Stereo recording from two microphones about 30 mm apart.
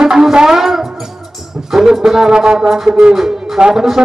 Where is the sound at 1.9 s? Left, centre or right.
Centre.